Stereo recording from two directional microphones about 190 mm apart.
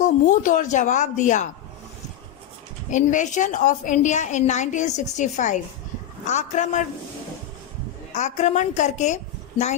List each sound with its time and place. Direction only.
0.0 s a woman's voice: 40° left (ahead or behind)
2.9 s a woman's voice: 40° left (ahead or behind)
8.1 s a woman's voice: 40° left (ahead or behind)